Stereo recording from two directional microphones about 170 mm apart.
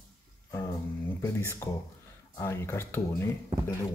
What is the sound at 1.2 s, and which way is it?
Speech, 15° left (ahead or behind).